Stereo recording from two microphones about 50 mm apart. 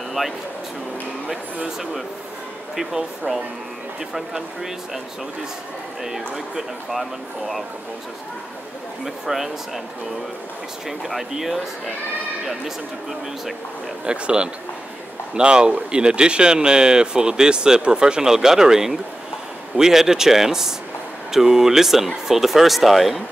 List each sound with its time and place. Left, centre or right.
0.2 s speech: centre
2.7 s speech: centre
6.0 s speech: centre
9.0 s speech: centre
10.9 s speech: centre
14.0 s speech: right; by 23.2 s centre